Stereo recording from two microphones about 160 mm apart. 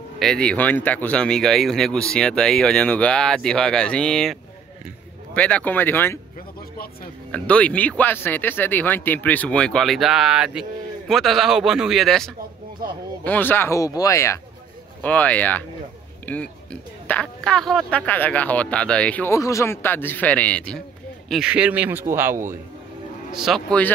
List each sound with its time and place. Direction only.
0.2 s speech: 5° left (ahead or behind)
7.3 s speech: 10° left (ahead or behind)
21.3 s a man's voice: 5° right (ahead or behind)
23.4 s speech: centre (ahead or behind)